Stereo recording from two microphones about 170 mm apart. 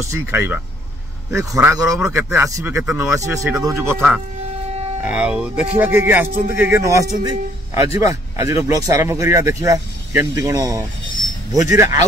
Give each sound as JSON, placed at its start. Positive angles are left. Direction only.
{"t": 0.0, "sound": "speech", "side_deg": -15}
{"t": 2.0, "sound": "speech", "side_deg": -5}
{"t": 2.3, "sound": "speech", "side_deg": -15}
{"t": 3.2, "sound": "speech", "side_deg": -15}
{"t": 5.1, "sound": "speech", "side_deg": -5}